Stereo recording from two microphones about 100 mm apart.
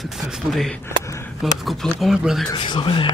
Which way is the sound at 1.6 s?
Centre (ahead or behind).